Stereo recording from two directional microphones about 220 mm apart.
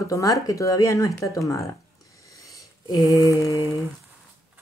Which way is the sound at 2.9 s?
15° left (ahead or behind).